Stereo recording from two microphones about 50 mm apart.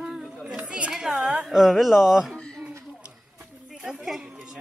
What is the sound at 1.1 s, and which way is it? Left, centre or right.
Speech, right.